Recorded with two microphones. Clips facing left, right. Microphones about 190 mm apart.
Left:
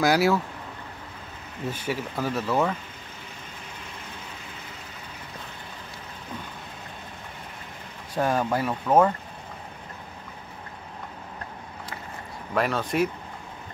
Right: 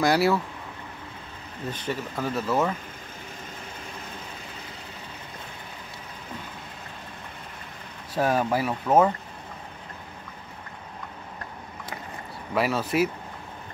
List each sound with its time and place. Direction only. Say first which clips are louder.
0.0 s speech: even; centre (ahead or behind)
1.7 s speech: left 1 dB; 10° left (ahead or behind)
8.1 s speech: right 1 dB; 10° right (ahead or behind)
12.5 s speech: right 1 dB; 5° right (ahead or behind)